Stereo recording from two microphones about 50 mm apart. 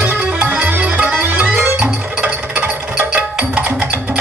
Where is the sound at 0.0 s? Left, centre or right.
Right.